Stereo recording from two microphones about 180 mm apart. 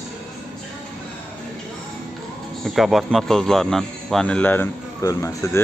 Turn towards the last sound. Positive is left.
turn(degrees=15)  # may be behind; listen again after turning